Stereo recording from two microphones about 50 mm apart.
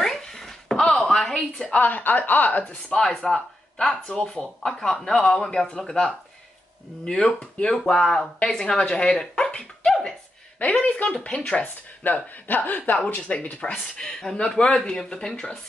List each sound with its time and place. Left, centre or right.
0.0 s a sound: centre
1.7 s speech: left
3.0 s speech: centre
9.8 s a sound: centre
10.6 s speech: left
11.6 s speech: left
13.0 s speech: left